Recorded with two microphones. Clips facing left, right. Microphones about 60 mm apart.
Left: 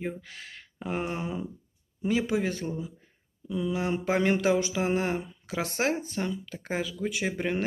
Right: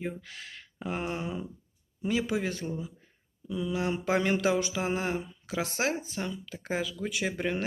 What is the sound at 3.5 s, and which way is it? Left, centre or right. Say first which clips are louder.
Speech: left 2 dB; left.